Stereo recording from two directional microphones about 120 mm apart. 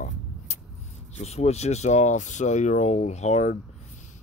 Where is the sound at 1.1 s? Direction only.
65° left (ahead or behind).